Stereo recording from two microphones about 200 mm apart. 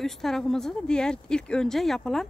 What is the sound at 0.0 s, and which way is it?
Speech, centre (ahead or behind).